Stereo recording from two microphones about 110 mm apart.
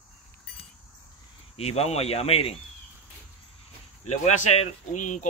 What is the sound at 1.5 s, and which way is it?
Speech, 70° left (ahead or behind).